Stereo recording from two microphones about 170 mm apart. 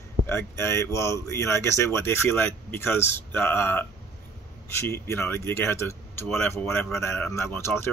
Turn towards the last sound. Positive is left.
turn(degrees=15)  # may be behind; listen again after turning